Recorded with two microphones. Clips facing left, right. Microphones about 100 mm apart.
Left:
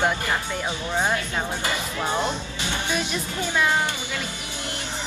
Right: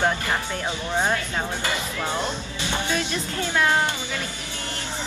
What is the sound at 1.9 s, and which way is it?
A woman's voice, 15° left (ahead or behind).